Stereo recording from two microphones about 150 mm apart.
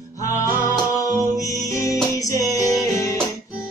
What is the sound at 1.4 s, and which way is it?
Music, 20° left (ahead or behind).